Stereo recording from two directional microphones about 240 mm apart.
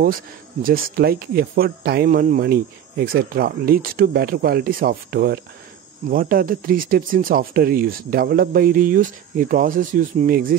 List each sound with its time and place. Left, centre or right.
0.0 s speech: right